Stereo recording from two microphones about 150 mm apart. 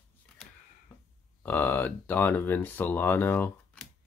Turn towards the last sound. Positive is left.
turn(degrees=15)  # may be behind; listen again after turning